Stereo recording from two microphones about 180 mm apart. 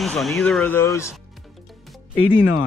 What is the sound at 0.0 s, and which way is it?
Speech, centre (ahead or behind).